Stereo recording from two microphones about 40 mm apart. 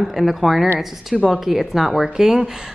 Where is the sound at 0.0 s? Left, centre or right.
Centre.